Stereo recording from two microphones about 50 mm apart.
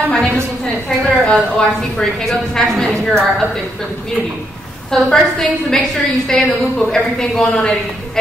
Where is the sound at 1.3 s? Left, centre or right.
Centre.